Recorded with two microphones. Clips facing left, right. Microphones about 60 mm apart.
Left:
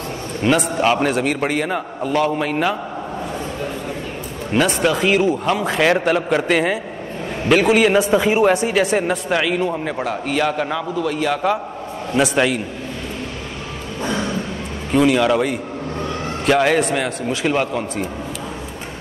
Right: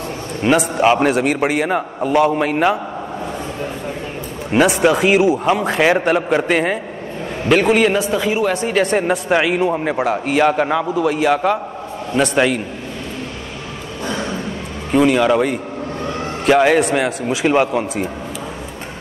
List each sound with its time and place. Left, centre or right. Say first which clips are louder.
0.4 s a man's voice: right 2 dB; centre
4.5 s a man's voice: right 4 dB; centre
8.0 s speech: left 3 dB; left
8.6 s a man's voice: right 1 dB; centre
8.9 s a man's voice: right 2 dB; centre
9.3 s a man's voice: right 4 dB; centre
12.2 s a man's voice: right 1 dB; centre
14.9 s a man's voice: right 2 dB; centre